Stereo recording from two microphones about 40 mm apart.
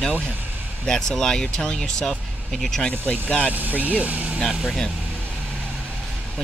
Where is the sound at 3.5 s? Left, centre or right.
Right.